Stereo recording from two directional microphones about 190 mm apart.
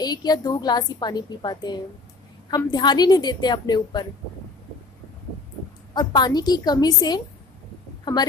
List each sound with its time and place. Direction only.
0.0 s a woman's voice: 20° left (ahead or behind)
5.9 s a woman's voice: 25° left (ahead or behind)